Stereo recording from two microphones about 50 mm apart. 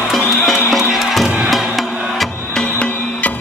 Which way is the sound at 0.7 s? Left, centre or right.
Centre.